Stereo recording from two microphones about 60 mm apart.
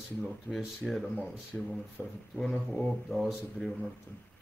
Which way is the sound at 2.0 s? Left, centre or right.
Left.